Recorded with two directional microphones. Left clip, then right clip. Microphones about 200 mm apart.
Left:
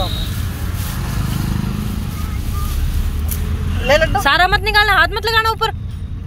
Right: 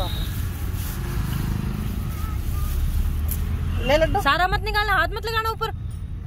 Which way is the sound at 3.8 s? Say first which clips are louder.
Left 6 dB; 50° right (ahead or behind).